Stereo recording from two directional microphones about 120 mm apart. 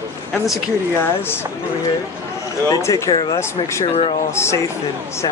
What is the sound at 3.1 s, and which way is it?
Speech, 45° left (ahead or behind).